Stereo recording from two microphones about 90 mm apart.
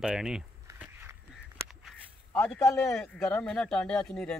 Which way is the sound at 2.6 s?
30° left (ahead or behind).